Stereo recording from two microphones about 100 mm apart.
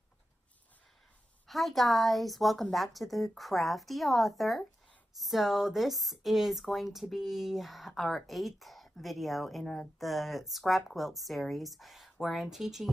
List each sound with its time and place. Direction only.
1.5 s speech: centre (ahead or behind)